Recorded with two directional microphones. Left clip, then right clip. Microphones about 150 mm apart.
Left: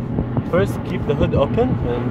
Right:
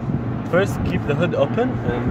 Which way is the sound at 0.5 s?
30° left (ahead or behind).